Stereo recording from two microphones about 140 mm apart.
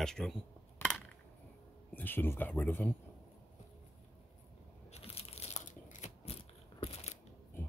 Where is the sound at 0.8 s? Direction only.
15° left (ahead or behind).